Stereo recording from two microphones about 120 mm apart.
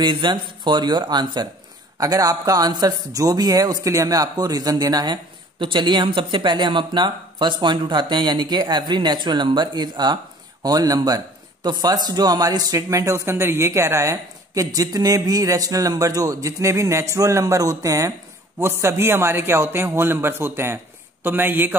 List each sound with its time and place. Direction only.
0.0 s a man's voice: 40° right (ahead or behind); by 21.7 s 15° right (ahead or behind)